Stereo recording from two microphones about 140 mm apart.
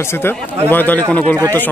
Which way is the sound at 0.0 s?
15° left (ahead or behind).